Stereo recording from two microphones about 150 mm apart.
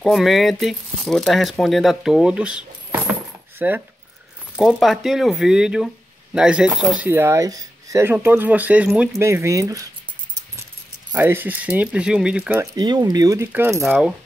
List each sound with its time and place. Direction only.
0.0 s speech: centre (ahead or behind)
3.1 s a sound: 15° right (ahead or behind)
4.6 s speech: centre (ahead or behind)
7.1 s speech: 15° right (ahead or behind)
9.1 s speech: 20° right (ahead or behind)
11.1 s speech: 15° right (ahead or behind)
12.7 s speech: 25° right (ahead or behind); by 14.1 s 5° right (ahead or behind)